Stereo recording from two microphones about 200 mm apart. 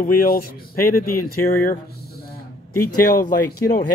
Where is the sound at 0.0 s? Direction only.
45° left (ahead or behind).